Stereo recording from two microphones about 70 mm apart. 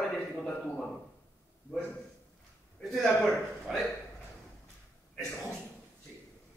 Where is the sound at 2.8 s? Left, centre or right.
Centre.